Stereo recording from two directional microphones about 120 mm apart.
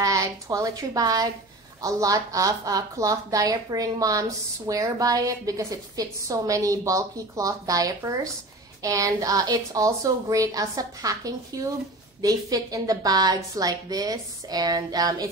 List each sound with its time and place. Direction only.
0.0 s a woman's voice: 30° right (ahead or behind)